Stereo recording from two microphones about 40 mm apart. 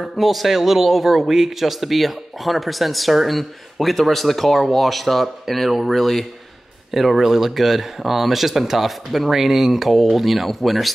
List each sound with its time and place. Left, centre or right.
0.0 s a man's voice: centre